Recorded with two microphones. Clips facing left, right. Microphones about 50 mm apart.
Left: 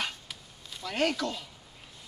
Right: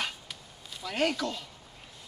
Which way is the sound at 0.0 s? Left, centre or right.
Centre.